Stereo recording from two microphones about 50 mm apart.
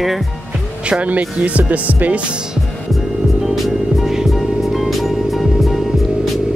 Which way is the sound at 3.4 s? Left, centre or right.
Centre.